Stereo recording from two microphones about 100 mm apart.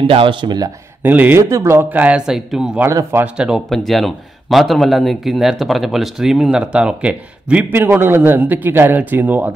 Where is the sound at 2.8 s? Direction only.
25° right (ahead or behind).